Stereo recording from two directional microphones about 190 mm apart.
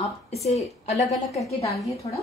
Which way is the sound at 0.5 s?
35° left (ahead or behind).